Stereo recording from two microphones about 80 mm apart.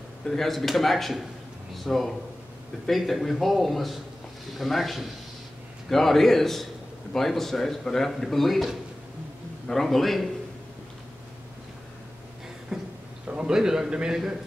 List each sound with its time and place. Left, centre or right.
0.3 s speech: centre
12.7 s a sound: centre
13.3 s a man's voice: centre